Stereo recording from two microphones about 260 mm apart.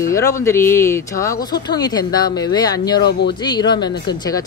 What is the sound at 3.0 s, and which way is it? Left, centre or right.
Speech, left.